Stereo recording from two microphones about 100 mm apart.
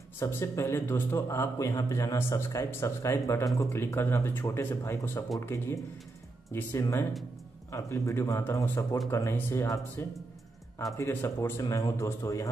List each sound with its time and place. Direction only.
0.2 s a man's voice: 25° left (ahead or behind)